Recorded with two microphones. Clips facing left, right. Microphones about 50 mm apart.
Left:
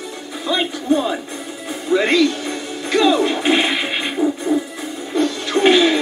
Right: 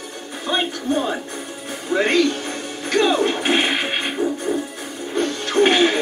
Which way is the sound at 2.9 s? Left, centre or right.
Right.